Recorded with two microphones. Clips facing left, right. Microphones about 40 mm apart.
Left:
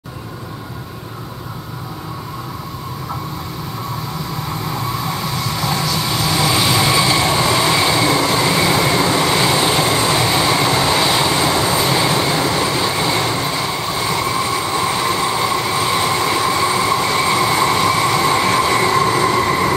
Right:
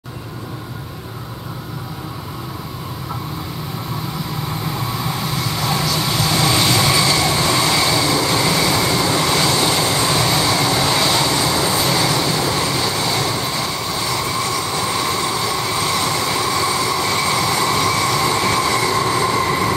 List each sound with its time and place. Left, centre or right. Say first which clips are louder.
4.5 s vehicle: left 3 dB; centre
7.2 s train: left 2 dB; centre
18.8 s train: left 3 dB; left
19.0 s train: left 2 dB; centre